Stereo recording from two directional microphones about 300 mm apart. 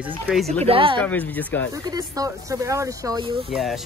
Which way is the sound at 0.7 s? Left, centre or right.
Centre.